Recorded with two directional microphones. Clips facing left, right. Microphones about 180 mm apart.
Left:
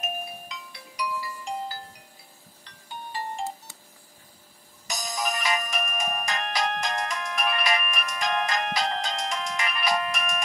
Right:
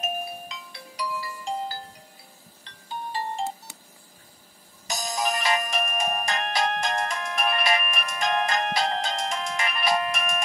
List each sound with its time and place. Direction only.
0.0 s music: 30° right (ahead or behind)
3.1 s music: 30° right (ahead or behind)
4.8 s music: 30° right (ahead or behind)